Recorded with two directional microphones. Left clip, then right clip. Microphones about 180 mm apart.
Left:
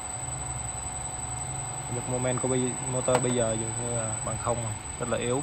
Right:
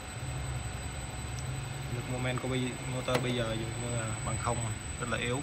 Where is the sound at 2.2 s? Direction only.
35° left (ahead or behind).